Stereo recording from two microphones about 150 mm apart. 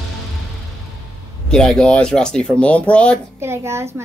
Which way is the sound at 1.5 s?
5° left (ahead or behind).